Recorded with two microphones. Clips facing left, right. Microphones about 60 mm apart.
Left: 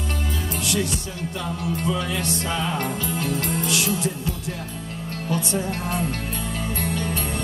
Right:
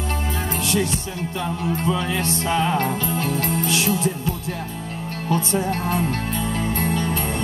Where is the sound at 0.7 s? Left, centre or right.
Right.